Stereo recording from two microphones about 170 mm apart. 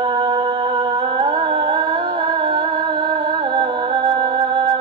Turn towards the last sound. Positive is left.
turn(degrees=-30)  # may be behind; listen again after turning